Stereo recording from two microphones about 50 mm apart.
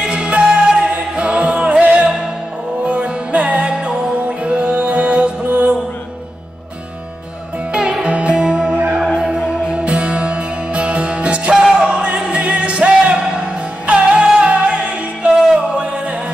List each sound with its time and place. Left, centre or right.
0.0 s music: centre
7.7 s music: centre
9.0 s music: centre
9.3 s music: right